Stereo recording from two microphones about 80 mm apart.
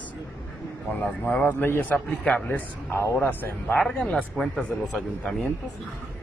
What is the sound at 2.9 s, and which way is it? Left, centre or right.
Speech, left.